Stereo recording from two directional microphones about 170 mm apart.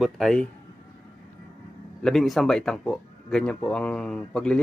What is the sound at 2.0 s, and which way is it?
A man's voice, centre (ahead or behind).